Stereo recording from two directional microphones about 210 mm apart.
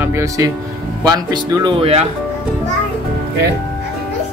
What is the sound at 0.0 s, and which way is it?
Speech, 15° right (ahead or behind).